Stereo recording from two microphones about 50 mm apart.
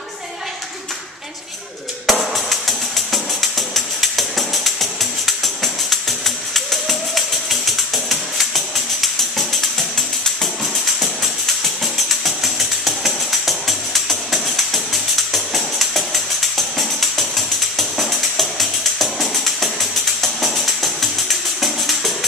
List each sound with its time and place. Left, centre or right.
2.0 s tambourine: centre
11.6 s tambourine: centre